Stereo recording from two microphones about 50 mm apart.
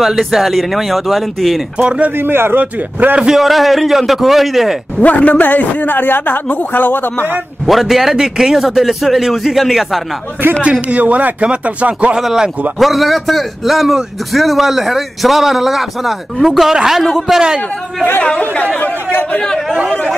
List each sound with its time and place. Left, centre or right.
0.0 s a man's voice: centre
1.8 s speech: right
2.1 s a man's voice: right
2.6 s speech: right
3.2 s a man's voice: centre
5.0 s a man's voice: left
7.6 s a man's voice: centre
10.6 s speech: right
12.2 s a man's voice: centre
18.2 s speech: left